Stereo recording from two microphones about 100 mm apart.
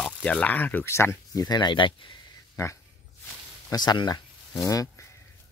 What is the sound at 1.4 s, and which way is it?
Speech, 45° left (ahead or behind).